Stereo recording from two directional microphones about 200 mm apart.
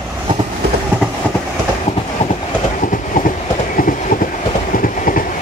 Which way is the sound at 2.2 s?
35° left (ahead or behind).